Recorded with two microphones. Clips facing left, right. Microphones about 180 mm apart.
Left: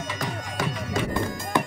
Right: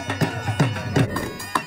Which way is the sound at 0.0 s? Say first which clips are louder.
Right 6 dB; 60° right (ahead or behind).